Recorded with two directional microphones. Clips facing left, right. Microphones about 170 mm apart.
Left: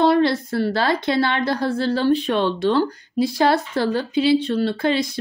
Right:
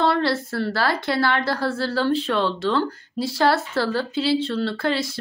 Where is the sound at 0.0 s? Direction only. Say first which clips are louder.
Left 4 dB; 15° left (ahead or behind).